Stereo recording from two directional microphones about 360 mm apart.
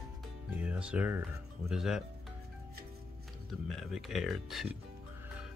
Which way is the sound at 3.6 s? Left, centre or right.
Centre.